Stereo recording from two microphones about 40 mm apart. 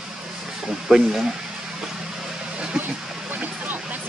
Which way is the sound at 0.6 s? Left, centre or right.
Centre.